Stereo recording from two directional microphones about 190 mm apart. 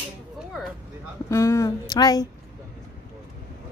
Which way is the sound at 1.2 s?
15° left (ahead or behind).